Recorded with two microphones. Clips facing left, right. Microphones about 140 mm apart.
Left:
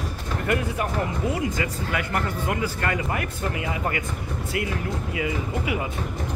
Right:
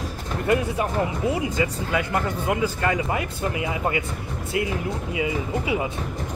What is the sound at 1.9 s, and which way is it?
A man's voice, 20° right (ahead or behind).